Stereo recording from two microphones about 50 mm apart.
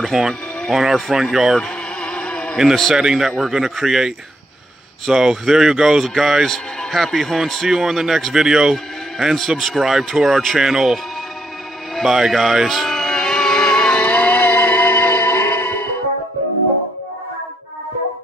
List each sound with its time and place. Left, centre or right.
0.0 s speech: centre
1.6 s insect: centre
2.5 s speech: centre
3.0 s speech: centre
9.2 s speech: centre
9.8 s speech: centre
11.9 s music: centre; by 15.9 s left